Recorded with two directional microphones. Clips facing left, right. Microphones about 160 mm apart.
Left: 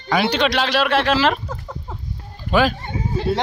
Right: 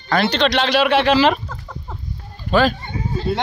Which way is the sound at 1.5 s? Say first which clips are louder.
Left 2 dB; 10° left (ahead or behind).